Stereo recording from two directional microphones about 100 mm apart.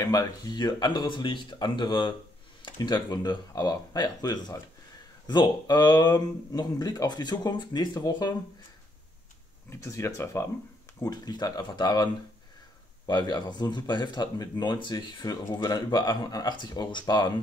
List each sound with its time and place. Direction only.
0.0 s speech: 35° left (ahead or behind)
9.7 s speech: 30° left (ahead or behind)
11.1 s speech: 40° left (ahead or behind)